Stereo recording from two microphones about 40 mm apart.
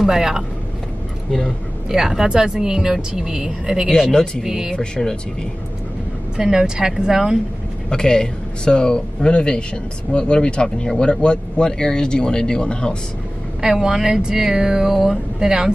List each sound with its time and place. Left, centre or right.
0.0 s speech: centre
1.9 s speech: centre
4.7 s a man's voice: centre
6.3 s speech: centre
7.9 s a man's voice: centre
13.6 s speech: centre